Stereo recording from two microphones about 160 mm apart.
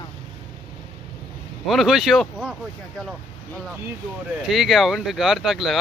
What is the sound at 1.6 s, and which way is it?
Speech, centre (ahead or behind).